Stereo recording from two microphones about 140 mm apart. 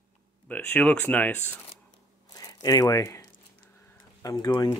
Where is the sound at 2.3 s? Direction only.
25° left (ahead or behind).